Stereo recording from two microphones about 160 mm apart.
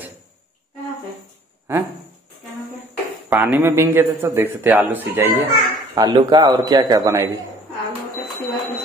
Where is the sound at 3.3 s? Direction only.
10° right (ahead or behind).